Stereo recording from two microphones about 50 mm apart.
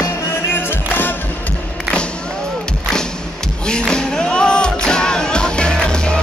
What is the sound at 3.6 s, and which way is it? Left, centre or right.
Music, centre.